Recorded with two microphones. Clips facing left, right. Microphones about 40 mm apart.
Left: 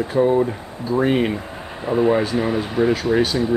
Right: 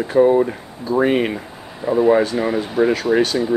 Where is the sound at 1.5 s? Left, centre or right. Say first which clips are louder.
Left 3 dB; left.